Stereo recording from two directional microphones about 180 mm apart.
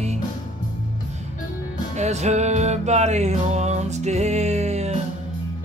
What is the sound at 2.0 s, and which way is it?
Music, 40° right (ahead or behind).